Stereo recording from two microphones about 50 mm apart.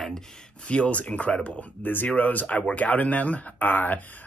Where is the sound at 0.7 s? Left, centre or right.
Left.